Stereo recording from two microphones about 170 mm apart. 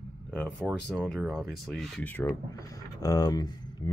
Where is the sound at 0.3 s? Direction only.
5° left (ahead or behind).